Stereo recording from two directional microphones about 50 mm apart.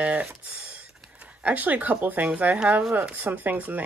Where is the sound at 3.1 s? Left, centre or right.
Right.